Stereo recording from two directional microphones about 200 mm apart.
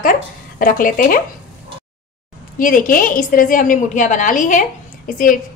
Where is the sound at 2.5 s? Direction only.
45° left (ahead or behind).